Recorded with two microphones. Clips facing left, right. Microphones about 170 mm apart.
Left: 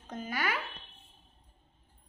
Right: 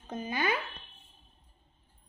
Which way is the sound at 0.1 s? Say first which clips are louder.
Right 3 dB; 20° right (ahead or behind).